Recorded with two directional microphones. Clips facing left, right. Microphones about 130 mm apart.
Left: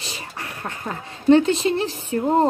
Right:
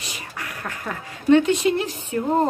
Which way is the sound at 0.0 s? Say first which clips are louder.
Left 1 dB; 30° left (ahead or behind).